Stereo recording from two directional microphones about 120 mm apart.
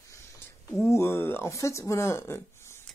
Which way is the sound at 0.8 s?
20° left (ahead or behind).